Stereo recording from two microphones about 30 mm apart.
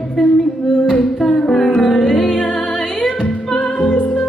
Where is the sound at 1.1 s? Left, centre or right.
Centre.